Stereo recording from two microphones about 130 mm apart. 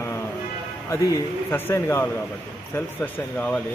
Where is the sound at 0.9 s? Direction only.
20° left (ahead or behind).